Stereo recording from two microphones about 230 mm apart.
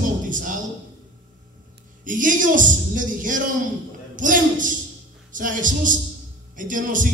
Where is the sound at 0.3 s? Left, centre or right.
Right.